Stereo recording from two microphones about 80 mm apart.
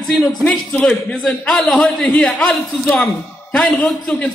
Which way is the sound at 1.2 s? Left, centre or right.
Centre.